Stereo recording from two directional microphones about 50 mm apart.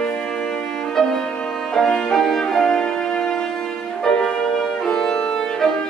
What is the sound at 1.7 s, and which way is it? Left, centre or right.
Violin, centre.